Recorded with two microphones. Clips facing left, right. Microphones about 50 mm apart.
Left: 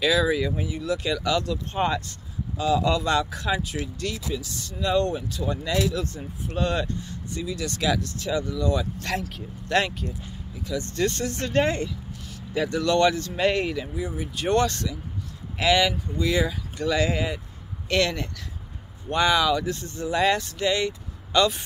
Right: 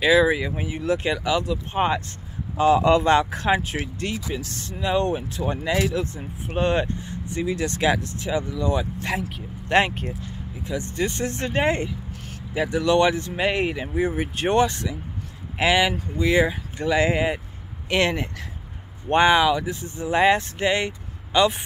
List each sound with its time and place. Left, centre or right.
0.0 s speech: right
1.2 s speech: centre
2.5 s speech: right
4.5 s speech: right
4.7 s speech: right
10.9 s speech: centre
11.2 s speech: right
13.9 s speech: right
14.5 s speech: centre
20.1 s speech: right
21.3 s speech: centre